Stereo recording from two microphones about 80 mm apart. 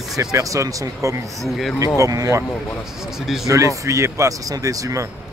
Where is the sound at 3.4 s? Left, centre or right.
Right.